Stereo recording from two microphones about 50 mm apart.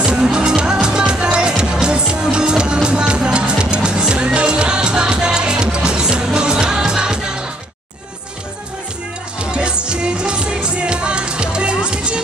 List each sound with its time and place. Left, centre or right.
0.0 s music: centre
9.4 s music: centre